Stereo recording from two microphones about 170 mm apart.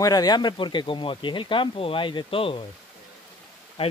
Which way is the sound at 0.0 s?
20° left (ahead or behind).